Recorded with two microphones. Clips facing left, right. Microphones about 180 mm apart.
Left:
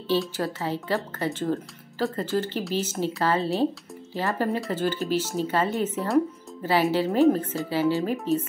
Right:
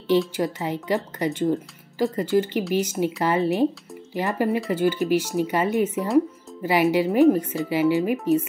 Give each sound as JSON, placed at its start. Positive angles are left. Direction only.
{"t": 0.4, "sound": "a woman's voice", "side_deg": -15}